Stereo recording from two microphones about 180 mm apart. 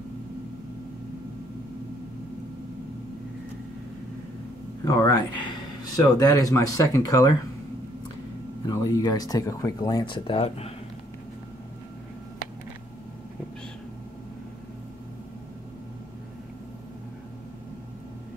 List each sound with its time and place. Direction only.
4.8 s a sound: 25° left (ahead or behind)
5.9 s speech: 20° left (ahead or behind)
8.6 s speech: 20° left (ahead or behind)